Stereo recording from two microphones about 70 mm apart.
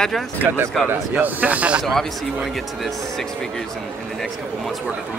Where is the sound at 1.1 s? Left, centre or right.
Right.